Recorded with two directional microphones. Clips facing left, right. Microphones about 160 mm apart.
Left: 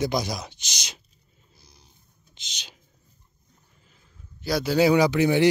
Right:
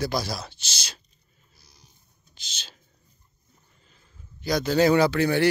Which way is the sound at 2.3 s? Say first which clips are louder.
Even; 15° left (ahead or behind).